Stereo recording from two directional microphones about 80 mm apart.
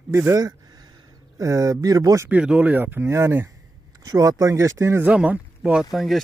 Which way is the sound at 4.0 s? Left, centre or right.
Right.